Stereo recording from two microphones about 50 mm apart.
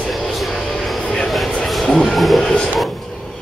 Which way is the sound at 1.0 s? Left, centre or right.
Centre.